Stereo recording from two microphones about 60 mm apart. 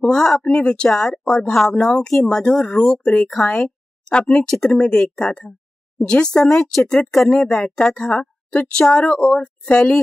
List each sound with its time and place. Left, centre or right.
0.0 s speech: centre
3.3 s speech: centre